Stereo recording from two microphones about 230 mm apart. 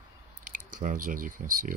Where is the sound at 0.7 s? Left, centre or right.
Right.